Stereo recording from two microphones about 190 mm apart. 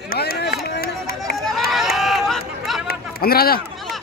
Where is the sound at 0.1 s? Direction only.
55° left (ahead or behind).